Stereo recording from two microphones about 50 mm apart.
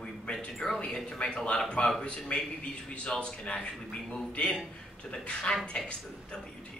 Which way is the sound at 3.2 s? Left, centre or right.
Left.